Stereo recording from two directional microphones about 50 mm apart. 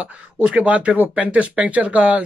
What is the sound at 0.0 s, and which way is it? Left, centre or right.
Speech, right.